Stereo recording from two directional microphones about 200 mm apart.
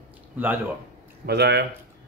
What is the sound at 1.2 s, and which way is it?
Speech, 55° right (ahead or behind).